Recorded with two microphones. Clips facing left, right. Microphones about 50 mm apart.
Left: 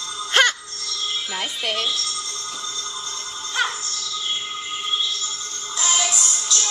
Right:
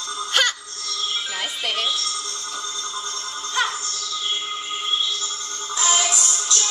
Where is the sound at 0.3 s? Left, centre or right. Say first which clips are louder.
Left 4 dB; left.